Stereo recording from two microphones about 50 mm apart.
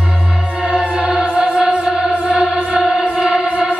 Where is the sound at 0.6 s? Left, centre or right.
Centre.